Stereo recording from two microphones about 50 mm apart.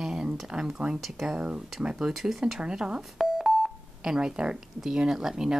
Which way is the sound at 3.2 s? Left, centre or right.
Centre.